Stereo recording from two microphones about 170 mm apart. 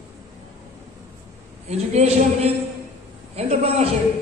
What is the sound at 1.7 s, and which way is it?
A man's voice, 40° right (ahead or behind).